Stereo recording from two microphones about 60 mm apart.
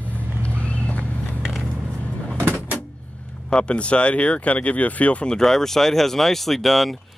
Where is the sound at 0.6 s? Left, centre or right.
Left.